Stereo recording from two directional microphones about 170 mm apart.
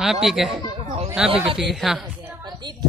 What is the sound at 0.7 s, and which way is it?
Chatter, 35° right (ahead or behind).